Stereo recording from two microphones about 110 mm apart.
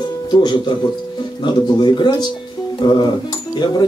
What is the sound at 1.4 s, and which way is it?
Speech, 45° left (ahead or behind).